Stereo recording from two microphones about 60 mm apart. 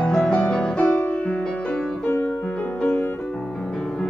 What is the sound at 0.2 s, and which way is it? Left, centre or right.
Music, centre.